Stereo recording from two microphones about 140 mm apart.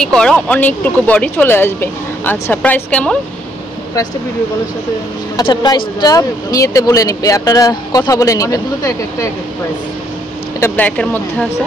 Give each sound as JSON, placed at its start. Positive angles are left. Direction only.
{"t": 0.0, "sound": "speech", "side_deg": 5}
{"t": 5.4, "sound": "speech", "side_deg": 30}
{"t": 10.6, "sound": "speech", "side_deg": 10}